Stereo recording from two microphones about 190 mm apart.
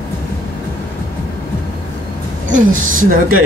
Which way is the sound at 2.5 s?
45° right (ahead or behind).